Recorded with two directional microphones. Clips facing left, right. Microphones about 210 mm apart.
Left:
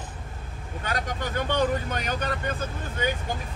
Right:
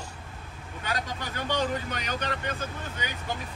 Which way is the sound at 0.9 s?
50° left (ahead or behind).